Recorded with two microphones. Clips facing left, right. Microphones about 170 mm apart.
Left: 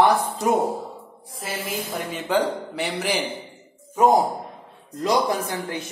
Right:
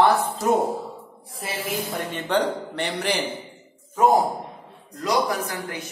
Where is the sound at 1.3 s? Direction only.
Centre (ahead or behind).